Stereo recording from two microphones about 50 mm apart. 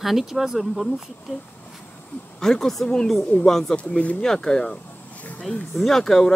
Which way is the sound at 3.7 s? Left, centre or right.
Left.